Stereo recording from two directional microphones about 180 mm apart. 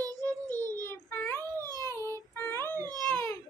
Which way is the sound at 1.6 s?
20° right (ahead or behind).